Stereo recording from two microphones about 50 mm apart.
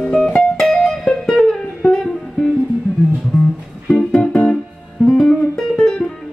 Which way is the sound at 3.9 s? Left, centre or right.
Centre.